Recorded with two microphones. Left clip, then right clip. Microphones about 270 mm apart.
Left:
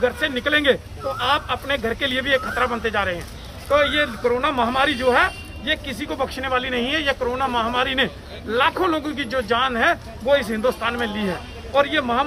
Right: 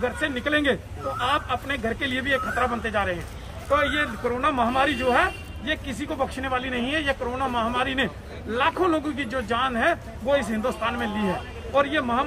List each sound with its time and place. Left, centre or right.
0.0 s speech: centre